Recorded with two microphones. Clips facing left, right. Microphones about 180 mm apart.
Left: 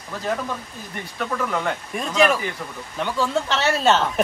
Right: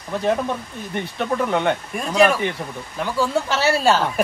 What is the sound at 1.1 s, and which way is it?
Speech, 25° right (ahead or behind).